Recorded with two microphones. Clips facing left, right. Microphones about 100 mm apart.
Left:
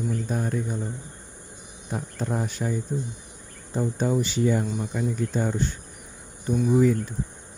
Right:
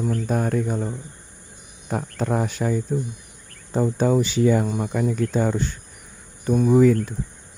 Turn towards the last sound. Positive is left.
turn(degrees=-80)